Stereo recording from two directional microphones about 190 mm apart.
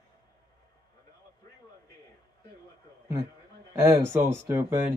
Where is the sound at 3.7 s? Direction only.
15° right (ahead or behind).